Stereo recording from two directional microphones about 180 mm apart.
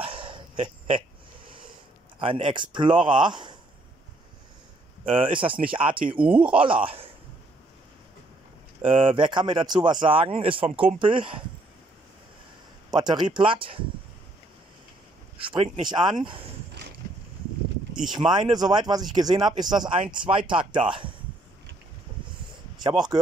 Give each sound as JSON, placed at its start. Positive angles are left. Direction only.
{"t": 0.0, "sound": "a sound", "side_deg": -30}
{"t": 2.1, "sound": "speech", "side_deg": -30}
{"t": 5.1, "sound": "speech", "side_deg": -30}
{"t": 6.1, "sound": "speech", "side_deg": -10}
{"t": 6.6, "sound": "speech", "side_deg": -30}
{"t": 8.8, "sound": "speech", "side_deg": -30}
{"t": 12.9, "sound": "speech", "side_deg": -25}
{"t": 15.3, "sound": "speech", "side_deg": -30}
{"t": 18.0, "sound": "speech", "side_deg": 0}
{"t": 18.3, "sound": "speech", "side_deg": -25}